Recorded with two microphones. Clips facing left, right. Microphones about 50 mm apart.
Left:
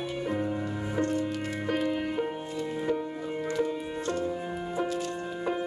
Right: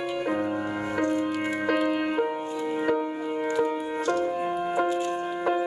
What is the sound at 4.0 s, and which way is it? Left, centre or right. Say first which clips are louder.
Music: right 6 dB; right.